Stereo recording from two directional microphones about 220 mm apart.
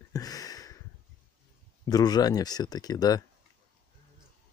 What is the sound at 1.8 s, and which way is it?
Speech, 15° left (ahead or behind).